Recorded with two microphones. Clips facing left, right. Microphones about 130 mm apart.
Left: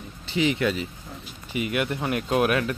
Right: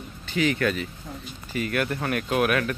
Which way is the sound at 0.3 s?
20° left (ahead or behind).